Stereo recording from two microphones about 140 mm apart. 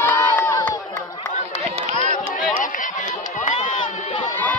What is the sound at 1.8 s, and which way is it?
Chatter, 55° right (ahead or behind).